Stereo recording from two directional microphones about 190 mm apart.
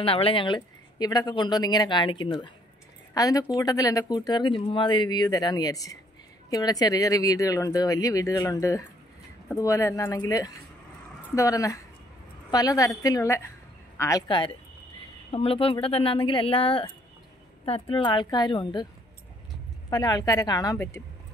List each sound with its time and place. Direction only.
0.0 s speech: 30° left (ahead or behind)
19.9 s speech: 20° left (ahead or behind)